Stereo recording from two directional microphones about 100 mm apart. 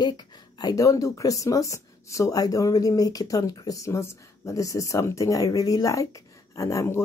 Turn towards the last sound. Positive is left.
turn(degrees=30)  # may be behind; listen again after turning